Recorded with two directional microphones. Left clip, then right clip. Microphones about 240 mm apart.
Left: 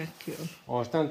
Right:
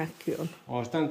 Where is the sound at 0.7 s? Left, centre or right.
Centre.